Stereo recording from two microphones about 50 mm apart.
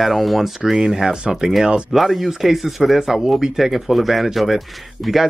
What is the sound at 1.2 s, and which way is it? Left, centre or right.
Speech, centre.